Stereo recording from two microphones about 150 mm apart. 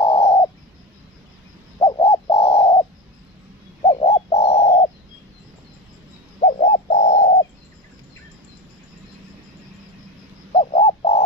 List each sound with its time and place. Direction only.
0.0 s bird: 30° left (ahead or behind)
1.9 s bird: 30° left (ahead or behind)
4.0 s bird: 40° left (ahead or behind)
6.4 s bird: 50° left (ahead or behind)
10.6 s bird: 45° left (ahead or behind)